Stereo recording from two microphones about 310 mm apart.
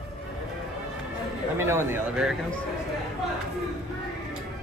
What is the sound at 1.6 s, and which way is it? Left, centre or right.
Speech, centre.